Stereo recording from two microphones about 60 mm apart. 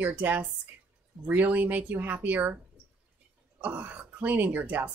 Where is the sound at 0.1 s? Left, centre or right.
Right.